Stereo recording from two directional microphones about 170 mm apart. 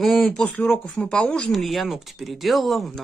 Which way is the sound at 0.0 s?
Centre (ahead or behind).